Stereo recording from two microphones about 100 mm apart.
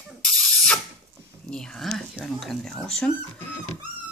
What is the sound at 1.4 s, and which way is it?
Speech, 5° left (ahead or behind).